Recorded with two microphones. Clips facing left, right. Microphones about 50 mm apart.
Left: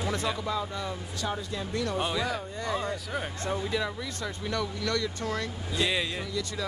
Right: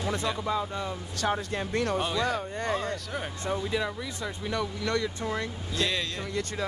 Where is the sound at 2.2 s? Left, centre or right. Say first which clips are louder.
Right 3 dB; right.